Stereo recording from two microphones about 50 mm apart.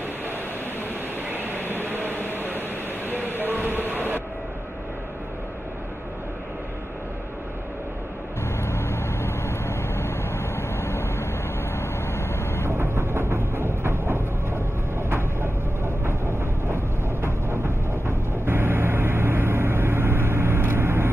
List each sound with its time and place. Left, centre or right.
1.3 s a sound: right
3.3 s train: right
8.5 s vehicle: left
12.6 s train: right